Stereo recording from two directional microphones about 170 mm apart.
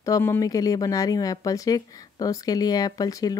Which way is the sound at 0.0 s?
15° left (ahead or behind).